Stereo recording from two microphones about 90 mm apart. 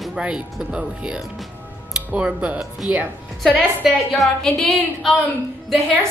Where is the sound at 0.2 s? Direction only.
10° right (ahead or behind).